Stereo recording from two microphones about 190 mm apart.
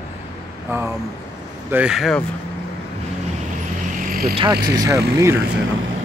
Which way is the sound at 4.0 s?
50° right (ahead or behind).